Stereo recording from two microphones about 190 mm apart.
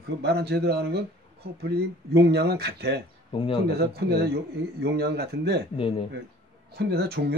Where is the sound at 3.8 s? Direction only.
55° right (ahead or behind).